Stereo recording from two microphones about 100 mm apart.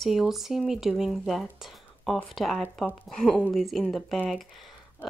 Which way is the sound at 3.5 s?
Centre (ahead or behind).